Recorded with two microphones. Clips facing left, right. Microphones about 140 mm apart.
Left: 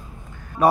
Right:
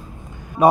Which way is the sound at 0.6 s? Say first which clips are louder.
Right 3 dB; 20° right (ahead or behind).